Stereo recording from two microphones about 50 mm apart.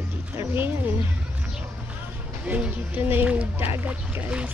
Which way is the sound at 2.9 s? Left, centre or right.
Right.